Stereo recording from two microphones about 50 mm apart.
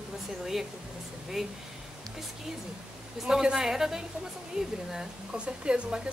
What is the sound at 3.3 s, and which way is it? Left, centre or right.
A woman's voice, centre.